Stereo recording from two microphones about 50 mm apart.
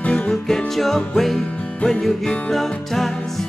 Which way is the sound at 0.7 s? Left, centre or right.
Centre.